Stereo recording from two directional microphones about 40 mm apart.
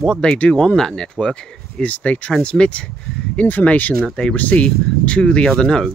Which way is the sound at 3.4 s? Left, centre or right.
Left.